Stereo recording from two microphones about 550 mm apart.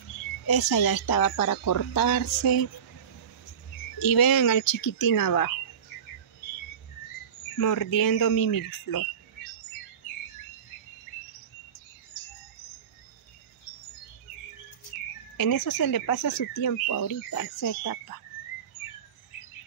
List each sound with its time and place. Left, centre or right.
0.5 s speech: left
4.0 s speech: left
7.5 s speech: left
15.3 s speech: left